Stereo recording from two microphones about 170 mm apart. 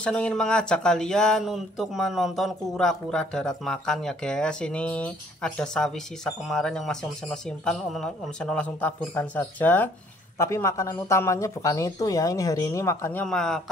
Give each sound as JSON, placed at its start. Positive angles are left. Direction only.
{"t": 0.0, "sound": "speech", "side_deg": 5}